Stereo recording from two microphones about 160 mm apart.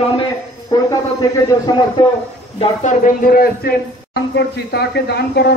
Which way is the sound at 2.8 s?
55° left (ahead or behind).